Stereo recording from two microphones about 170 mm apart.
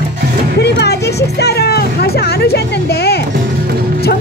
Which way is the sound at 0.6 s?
75° left (ahead or behind).